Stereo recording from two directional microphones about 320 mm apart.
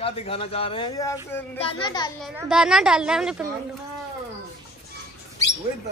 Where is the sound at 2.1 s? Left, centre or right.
Centre.